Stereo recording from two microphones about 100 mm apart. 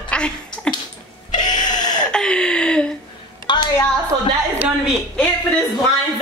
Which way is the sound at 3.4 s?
50° left (ahead or behind).